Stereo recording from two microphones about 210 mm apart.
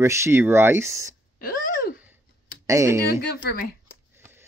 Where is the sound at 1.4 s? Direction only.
40° left (ahead or behind).